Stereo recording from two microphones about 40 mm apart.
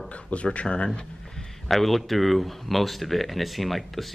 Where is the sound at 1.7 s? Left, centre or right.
Centre.